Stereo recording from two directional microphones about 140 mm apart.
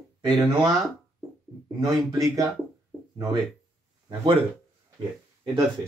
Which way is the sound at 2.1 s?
25° right (ahead or behind).